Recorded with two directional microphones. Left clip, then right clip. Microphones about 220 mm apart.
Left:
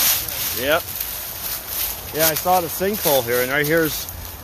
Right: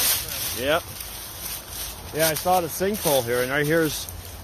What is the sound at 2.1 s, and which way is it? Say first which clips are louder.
Speech: left 3 dB; 10° right (ahead or behind).